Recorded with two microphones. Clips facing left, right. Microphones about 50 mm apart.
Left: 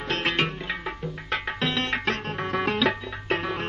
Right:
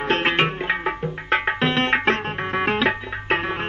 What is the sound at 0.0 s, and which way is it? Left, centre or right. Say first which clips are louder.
Music: right 6 dB; right.